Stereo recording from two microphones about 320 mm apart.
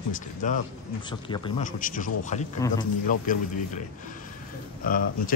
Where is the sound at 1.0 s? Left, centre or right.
Centre.